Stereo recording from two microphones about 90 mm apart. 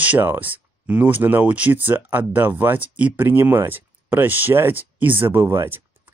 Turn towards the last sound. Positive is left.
turn(degrees=-30)  # may be behind; listen again after turning